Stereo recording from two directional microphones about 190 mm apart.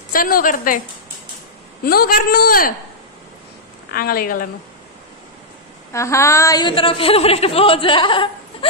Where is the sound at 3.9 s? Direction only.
50° left (ahead or behind).